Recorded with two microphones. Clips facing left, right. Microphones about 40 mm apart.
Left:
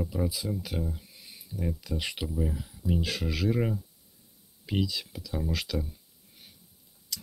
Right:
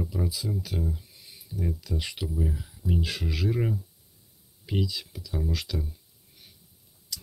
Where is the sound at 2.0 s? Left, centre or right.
Left.